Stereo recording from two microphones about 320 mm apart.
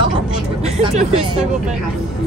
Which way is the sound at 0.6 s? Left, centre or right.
Right.